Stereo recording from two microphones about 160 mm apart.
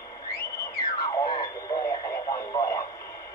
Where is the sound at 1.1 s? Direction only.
25° left (ahead or behind).